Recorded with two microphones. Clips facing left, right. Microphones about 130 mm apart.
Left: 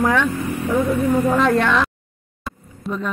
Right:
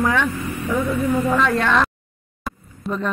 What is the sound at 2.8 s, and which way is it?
Speech, centre (ahead or behind).